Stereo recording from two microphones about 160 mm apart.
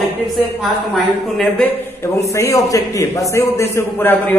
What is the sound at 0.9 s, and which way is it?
Speech, 5° left (ahead or behind).